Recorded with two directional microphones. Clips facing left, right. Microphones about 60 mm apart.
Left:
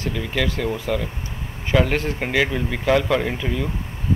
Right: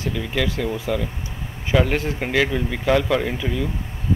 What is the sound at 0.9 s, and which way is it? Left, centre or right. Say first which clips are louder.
Speech: even; centre.